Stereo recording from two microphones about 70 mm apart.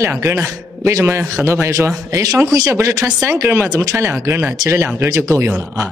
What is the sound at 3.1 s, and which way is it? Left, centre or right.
Speech, right.